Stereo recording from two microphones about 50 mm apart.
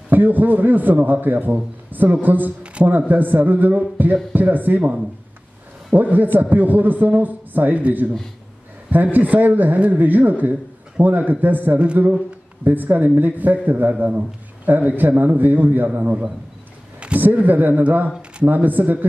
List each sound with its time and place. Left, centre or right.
0.1 s a man's voice: right
2.6 s speech: right
3.1 s a man's voice: right
5.9 s a man's voice: right